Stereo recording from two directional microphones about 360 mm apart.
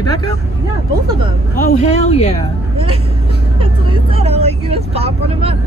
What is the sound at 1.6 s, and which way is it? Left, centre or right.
Speech, centre.